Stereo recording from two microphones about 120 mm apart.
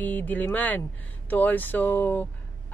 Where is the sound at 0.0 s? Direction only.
15° left (ahead or behind).